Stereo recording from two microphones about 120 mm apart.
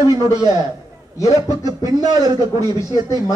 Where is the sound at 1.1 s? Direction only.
30° left (ahead or behind).